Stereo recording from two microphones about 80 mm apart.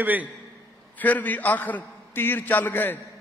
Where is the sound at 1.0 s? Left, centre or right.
Left.